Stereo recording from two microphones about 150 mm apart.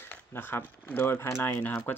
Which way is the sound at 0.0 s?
15° left (ahead or behind).